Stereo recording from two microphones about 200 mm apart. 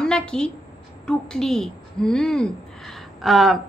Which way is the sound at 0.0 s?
5° left (ahead or behind).